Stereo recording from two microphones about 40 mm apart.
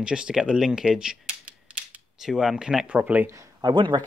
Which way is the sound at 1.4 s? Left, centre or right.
Right.